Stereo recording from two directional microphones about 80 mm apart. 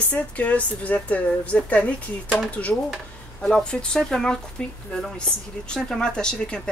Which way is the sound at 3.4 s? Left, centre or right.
Centre.